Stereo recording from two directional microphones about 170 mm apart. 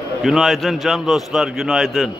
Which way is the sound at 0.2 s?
Centre (ahead or behind).